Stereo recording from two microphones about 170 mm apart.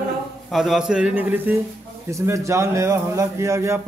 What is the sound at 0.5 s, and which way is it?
A man's voice, centre (ahead or behind).